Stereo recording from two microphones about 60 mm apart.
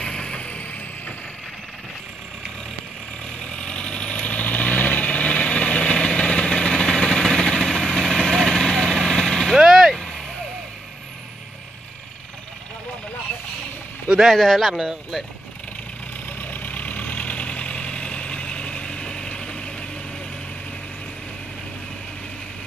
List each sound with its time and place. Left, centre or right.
0.0 s vehicle: centre
3.3 s vehicle: centre
9.6 s vehicle: centre
9.9 s vehicle: centre
14.1 s speech: centre
16.3 s vehicle: left; by 19.7 s centre